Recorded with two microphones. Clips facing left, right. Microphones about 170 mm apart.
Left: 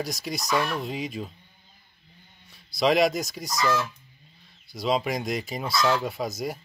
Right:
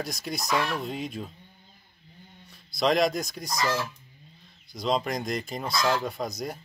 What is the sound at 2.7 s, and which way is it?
Speech, centre (ahead or behind).